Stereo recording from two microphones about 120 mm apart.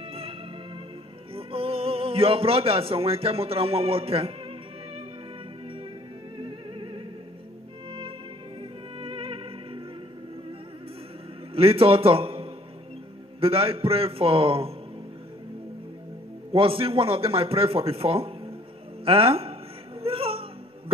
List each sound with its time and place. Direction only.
0.1 s music: 50° right (ahead or behind)
1.3 s a man's voice: 50° right (ahead or behind)
6.3 s music: 45° right (ahead or behind)
8.9 s music: 50° right (ahead or behind)
11.5 s a man's voice: 50° right (ahead or behind)
16.5 s speech: 50° right (ahead or behind)
20.0 s music: 50° right (ahead or behind)